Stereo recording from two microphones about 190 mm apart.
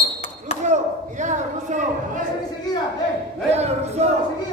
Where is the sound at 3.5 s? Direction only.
35° right (ahead or behind).